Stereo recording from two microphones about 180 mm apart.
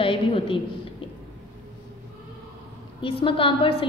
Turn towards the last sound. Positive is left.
turn(degrees=30)  # may be behind; listen again after turning